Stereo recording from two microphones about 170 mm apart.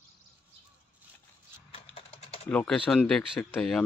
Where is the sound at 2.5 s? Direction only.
5° left (ahead or behind).